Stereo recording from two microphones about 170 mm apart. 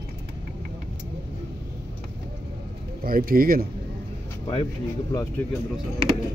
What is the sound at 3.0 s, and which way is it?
Speech, 55° right (ahead or behind).